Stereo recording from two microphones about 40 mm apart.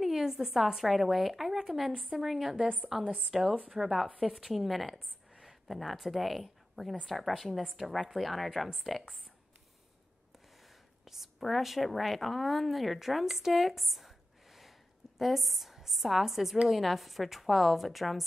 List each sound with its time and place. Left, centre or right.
0.0 s a woman's voice: centre
0.8 s a woman's voice: centre
3.0 s a woman's voice: right
3.7 s a woman's voice: centre
11.1 s a sound: centre
11.4 s a woman's voice: centre